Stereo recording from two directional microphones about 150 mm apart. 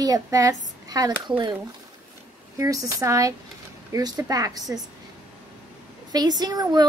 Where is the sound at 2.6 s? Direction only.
20° right (ahead or behind).